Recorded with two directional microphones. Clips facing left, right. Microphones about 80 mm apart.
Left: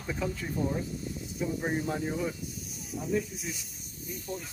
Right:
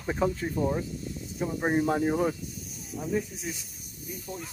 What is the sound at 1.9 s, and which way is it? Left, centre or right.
Speech, right.